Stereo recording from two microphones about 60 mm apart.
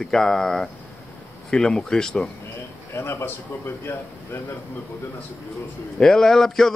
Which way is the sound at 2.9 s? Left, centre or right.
Left.